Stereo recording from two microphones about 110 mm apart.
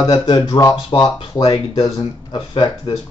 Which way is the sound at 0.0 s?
40° left (ahead or behind).